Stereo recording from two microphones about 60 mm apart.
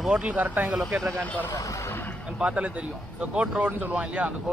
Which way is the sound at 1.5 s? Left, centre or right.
Left.